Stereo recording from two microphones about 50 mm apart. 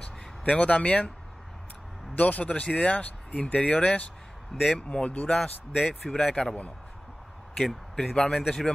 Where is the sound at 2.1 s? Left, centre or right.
Left.